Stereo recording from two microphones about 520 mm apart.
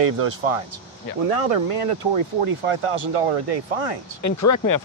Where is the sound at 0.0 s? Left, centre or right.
Right.